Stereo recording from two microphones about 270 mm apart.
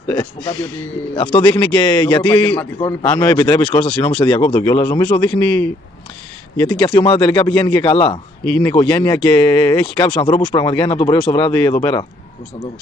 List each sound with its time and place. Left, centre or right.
0.1 s a man's voice: centre
8.5 s a man's voice: centre
11.0 s a man's voice: centre